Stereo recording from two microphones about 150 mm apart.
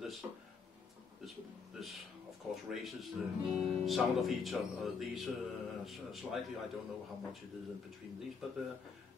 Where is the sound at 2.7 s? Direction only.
Centre (ahead or behind).